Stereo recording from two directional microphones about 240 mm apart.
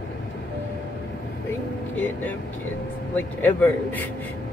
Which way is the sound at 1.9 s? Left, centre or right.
Centre.